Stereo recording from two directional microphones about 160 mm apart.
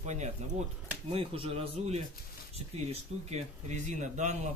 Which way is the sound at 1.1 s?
35° right (ahead or behind).